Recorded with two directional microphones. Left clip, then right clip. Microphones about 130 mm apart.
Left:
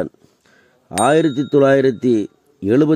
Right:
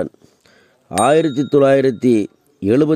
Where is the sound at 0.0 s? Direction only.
30° right (ahead or behind).